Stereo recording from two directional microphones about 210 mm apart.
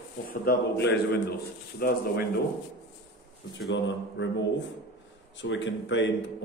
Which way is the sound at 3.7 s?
55° left (ahead or behind).